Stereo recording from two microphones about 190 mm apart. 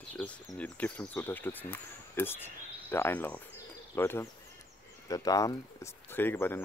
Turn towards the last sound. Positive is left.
turn(degrees=10)  # may be behind; listen again after turning